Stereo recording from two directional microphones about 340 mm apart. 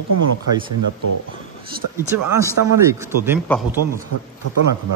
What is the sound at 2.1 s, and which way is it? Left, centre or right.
Speech, right.